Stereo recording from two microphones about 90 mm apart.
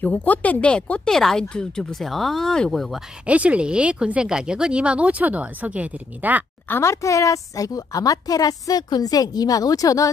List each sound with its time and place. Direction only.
0.0 s speech: 20° left (ahead or behind); by 3.0 s centre (ahead or behind)
3.3 s speech: 15° right (ahead or behind)
6.7 s a woman's voice: 30° left (ahead or behind)